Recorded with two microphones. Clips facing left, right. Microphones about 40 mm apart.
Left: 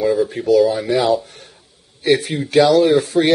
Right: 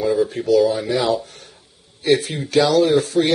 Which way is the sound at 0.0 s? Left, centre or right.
Centre.